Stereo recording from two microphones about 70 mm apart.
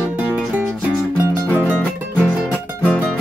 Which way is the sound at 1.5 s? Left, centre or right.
Centre.